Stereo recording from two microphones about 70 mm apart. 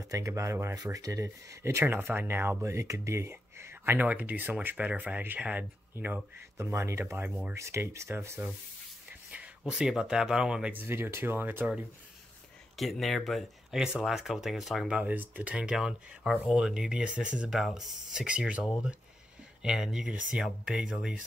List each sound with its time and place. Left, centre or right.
0.0 s speech: right
0.4 s speech: right
0.9 s speech: right
2.6 s speech: right
6.7 s speech: right
9.7 s speech: centre
10.7 s speech: right
12.7 s speech: centre
14.9 s speech: right
15.5 s speech: centre
17.5 s speech: centre
18.2 s speech: centre
19.6 s speech: centre